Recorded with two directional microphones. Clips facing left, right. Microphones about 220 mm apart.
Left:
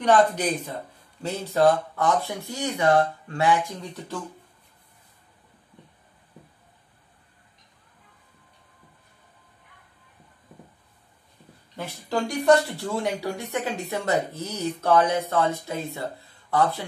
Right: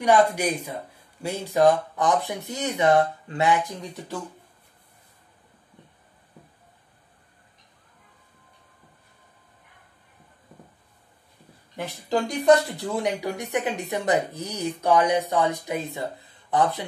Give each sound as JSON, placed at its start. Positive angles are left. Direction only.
{"t": 0.0, "sound": "speech", "side_deg": -10}
{"t": 11.7, "sound": "speech", "side_deg": -20}